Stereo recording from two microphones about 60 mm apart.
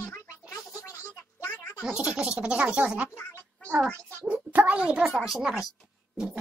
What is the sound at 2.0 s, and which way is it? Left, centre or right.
Speech, centre.